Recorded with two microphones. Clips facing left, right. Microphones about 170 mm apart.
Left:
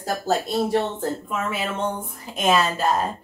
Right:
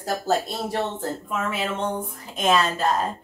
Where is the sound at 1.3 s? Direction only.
Centre (ahead or behind).